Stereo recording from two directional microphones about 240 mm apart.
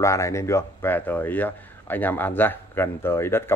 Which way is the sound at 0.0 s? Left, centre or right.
Centre.